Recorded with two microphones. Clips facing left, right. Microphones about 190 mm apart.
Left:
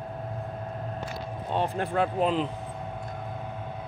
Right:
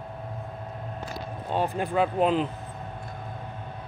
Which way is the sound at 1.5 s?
5° right (ahead or behind).